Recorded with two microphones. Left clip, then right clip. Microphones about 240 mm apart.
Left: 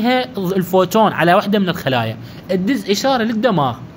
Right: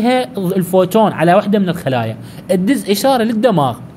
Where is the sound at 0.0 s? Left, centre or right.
Centre.